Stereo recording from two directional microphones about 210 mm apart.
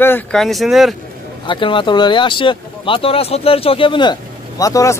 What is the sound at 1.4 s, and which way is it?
Speech, 25° left (ahead or behind).